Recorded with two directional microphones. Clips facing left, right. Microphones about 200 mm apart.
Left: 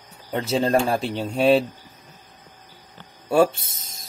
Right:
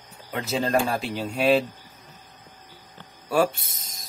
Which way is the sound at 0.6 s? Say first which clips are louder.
Left 2 dB; 30° left (ahead or behind).